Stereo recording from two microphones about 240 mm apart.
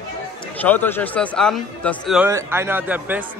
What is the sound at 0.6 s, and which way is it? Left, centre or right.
Speech, centre.